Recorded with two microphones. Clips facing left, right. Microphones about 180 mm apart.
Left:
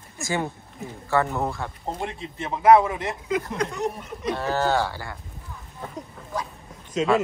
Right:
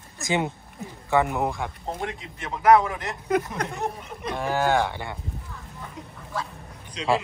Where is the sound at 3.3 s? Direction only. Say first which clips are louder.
Right 2 dB; 55° right (ahead or behind).